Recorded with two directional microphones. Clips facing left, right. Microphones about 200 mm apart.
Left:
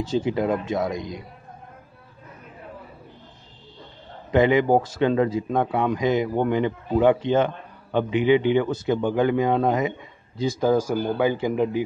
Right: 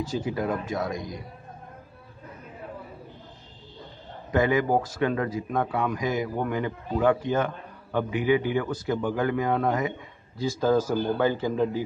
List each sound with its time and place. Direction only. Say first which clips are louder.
0.0 s a man's voice: left 5 dB; 25° left (ahead or behind)
4.3 s a man's voice: left 5 dB; 20° left (ahead or behind)